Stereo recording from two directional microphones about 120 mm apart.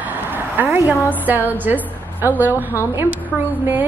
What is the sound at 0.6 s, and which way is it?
A woman's voice, 15° right (ahead or behind).